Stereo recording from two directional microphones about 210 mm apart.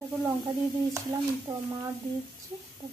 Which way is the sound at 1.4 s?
20° right (ahead or behind).